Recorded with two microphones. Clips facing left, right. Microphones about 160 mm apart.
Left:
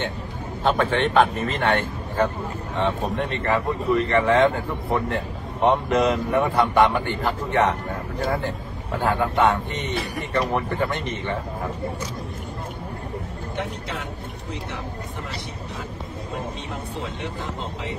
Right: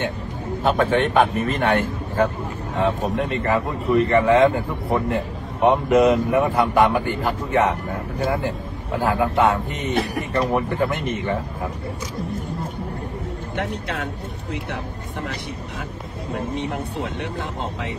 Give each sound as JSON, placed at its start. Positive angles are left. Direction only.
{"t": 0.7, "sound": "a man's voice", "side_deg": -10}
{"t": 9.0, "sound": "speech", "side_deg": -5}
{"t": 13.6, "sound": "speech", "side_deg": -65}
{"t": 16.7, "sound": "speech", "side_deg": -65}